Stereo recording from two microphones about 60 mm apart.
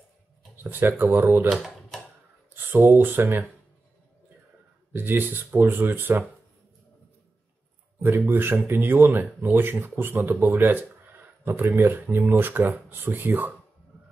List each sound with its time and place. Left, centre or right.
0.7 s speech: right
1.5 s typewriter: centre
2.5 s speech: right
4.9 s speech: right
8.0 s speech: right